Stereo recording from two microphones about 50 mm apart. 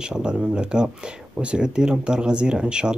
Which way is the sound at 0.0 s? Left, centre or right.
Centre.